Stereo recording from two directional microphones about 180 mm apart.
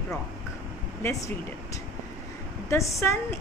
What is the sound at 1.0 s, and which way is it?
Speech, 15° left (ahead or behind).